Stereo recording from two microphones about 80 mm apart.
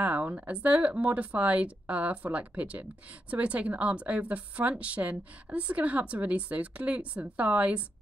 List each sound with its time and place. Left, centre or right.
0.0 s a woman's voice: centre